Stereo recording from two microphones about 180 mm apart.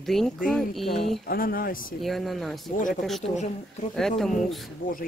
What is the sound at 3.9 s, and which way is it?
Speech, centre (ahead or behind).